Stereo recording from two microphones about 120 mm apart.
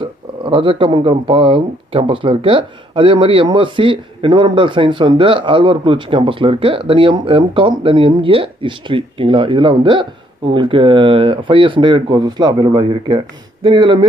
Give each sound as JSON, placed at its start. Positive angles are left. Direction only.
{"t": 0.0, "sound": "speech", "side_deg": -45}